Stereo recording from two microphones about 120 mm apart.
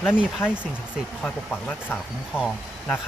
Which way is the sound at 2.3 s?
10° right (ahead or behind).